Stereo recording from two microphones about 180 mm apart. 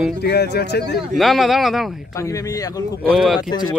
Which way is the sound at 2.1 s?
20° left (ahead or behind).